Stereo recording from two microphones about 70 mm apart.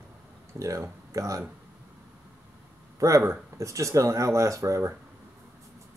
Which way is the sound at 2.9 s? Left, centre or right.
Right.